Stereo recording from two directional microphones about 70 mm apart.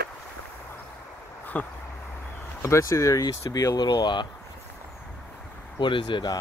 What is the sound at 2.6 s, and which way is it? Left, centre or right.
Speech, left.